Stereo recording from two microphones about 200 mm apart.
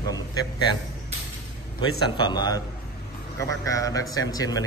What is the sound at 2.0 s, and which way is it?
Speech, 25° left (ahead or behind).